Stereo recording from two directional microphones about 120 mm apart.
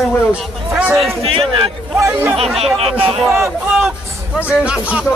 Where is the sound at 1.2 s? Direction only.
50° right (ahead or behind).